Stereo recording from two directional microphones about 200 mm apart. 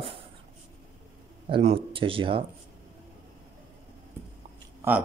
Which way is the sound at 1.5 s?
30° right (ahead or behind).